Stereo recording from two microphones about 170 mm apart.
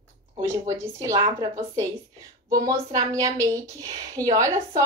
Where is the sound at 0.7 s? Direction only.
20° right (ahead or behind).